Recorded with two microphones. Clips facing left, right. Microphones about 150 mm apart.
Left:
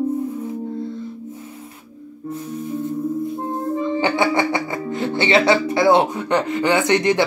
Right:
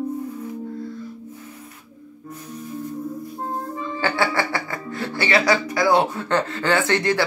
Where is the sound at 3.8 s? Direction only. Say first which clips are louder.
Left 4 dB; 20° left (ahead or behind).